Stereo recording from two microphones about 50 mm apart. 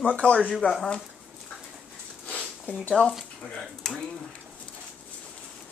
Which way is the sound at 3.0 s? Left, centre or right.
Left.